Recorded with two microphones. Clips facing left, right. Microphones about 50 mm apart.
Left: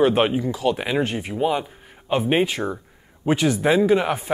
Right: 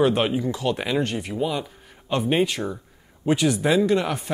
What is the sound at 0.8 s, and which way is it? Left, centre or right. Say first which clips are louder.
Speech: left 1 dB; centre.